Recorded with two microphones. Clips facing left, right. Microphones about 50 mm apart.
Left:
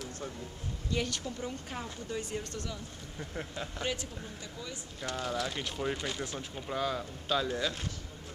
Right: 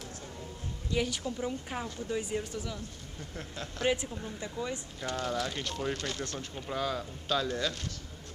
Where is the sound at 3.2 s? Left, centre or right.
Centre.